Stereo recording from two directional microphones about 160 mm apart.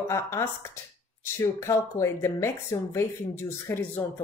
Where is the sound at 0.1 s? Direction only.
20° left (ahead or behind).